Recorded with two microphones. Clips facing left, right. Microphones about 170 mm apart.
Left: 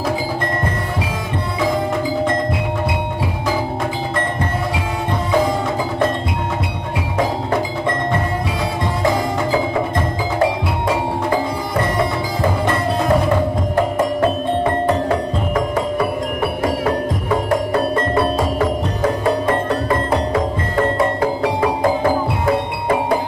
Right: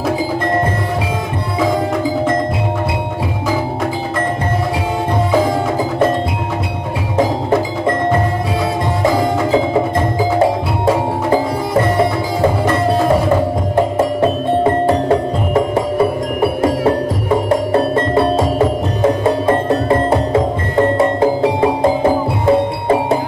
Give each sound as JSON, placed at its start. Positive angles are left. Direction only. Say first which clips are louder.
{"t": 19.2, "sound": "music", "louder": "right 3 dB", "side_deg": -25}